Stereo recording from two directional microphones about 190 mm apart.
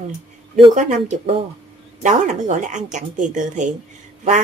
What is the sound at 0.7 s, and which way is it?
A woman's voice, 40° right (ahead or behind).